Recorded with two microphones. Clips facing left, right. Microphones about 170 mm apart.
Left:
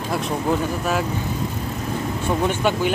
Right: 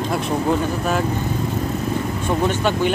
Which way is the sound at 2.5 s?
10° left (ahead or behind).